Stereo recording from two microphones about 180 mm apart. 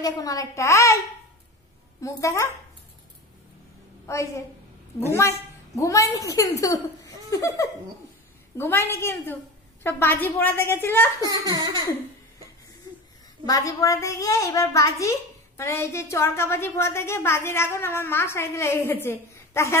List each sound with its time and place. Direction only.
0.0 s a woman's voice: 20° left (ahead or behind)
2.0 s a child's voice: 15° left (ahead or behind)
4.0 s a child's voice: 15° left (ahead or behind)
5.8 s a child's voice: 15° left (ahead or behind)
11.2 s a sound: 20° right (ahead or behind)
13.5 s a child's voice: 20° left (ahead or behind)